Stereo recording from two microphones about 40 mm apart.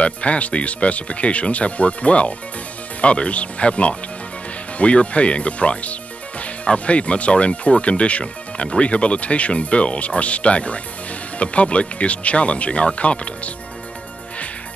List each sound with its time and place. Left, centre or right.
0.0 s speech: left